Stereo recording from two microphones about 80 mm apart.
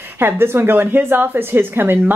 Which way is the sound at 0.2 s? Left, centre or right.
Right.